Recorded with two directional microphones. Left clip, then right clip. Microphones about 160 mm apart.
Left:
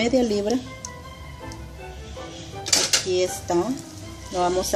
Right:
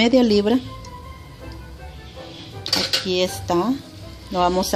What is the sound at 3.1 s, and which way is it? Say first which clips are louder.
Speech: right 2 dB; 50° right (ahead or behind).